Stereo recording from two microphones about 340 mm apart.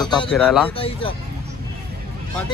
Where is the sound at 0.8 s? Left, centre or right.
Centre.